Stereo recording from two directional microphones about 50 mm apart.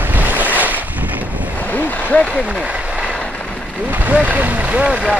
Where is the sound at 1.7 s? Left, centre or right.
Left.